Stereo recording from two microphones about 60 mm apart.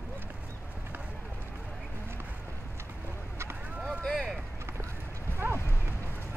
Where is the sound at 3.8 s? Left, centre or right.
Centre.